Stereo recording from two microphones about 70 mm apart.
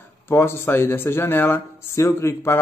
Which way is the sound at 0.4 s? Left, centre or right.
Left.